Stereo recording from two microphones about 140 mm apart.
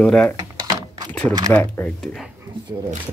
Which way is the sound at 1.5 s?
10° left (ahead or behind).